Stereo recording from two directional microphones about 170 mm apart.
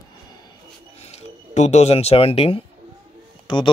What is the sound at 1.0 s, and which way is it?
Speech, 40° left (ahead or behind).